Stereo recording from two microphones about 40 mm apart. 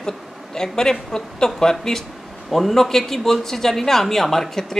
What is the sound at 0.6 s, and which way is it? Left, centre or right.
Speech, centre.